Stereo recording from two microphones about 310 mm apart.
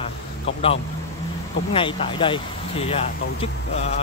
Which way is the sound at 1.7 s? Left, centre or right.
Centre.